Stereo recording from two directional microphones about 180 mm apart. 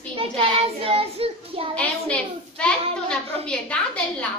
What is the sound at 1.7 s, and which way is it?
A child's voice, 5° left (ahead or behind).